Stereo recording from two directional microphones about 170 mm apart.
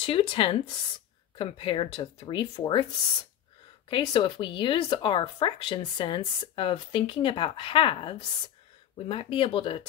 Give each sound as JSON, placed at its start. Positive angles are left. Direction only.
{"t": 0.0, "sound": "speech", "side_deg": 30}
{"t": 3.9, "sound": "speech", "side_deg": 25}